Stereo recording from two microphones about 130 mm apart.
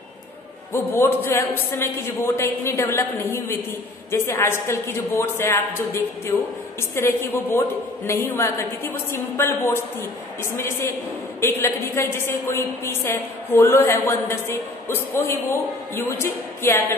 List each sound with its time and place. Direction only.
0.7 s a woman's voice: 20° left (ahead or behind)